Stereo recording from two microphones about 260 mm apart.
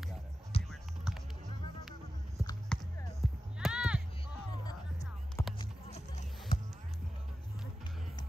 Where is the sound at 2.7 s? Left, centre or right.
Centre.